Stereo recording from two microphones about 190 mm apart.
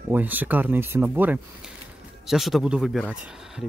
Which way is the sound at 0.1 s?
10° right (ahead or behind).